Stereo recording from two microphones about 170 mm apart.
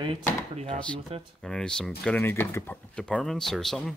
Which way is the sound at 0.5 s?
40° right (ahead or behind).